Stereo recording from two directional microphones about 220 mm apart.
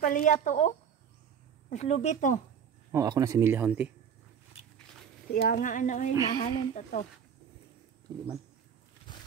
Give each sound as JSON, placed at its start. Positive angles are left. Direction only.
{"t": 0.0, "sound": "speech", "side_deg": 35}
{"t": 2.9, "sound": "speech", "side_deg": -15}
{"t": 5.3, "sound": "speech", "side_deg": 40}